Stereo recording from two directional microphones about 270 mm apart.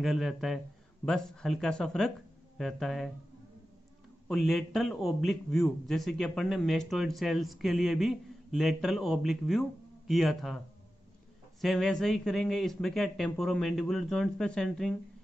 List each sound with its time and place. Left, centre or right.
0.0 s a man's voice: centre
4.3 s a man's voice: centre
11.6 s a man's voice: centre